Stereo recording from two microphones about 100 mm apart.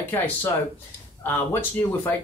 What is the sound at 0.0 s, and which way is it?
Speech, 20° left (ahead or behind).